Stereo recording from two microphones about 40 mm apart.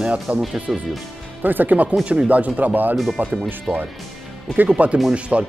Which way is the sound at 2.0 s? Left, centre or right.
Right.